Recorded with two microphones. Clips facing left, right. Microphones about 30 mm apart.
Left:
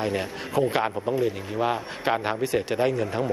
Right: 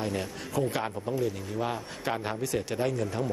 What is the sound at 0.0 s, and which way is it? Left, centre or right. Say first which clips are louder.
Speech: left 5 dB; left.